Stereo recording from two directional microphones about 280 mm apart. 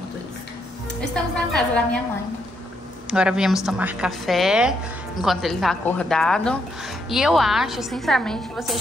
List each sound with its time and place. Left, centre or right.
1.1 s a woman's voice: centre
3.1 s a woman's voice: centre